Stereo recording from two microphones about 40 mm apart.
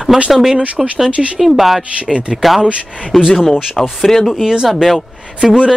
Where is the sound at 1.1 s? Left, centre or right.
Right.